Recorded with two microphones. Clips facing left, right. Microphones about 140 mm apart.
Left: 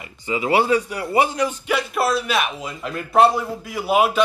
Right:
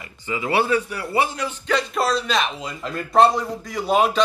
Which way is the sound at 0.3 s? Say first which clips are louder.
Left 2 dB; 20° left (ahead or behind).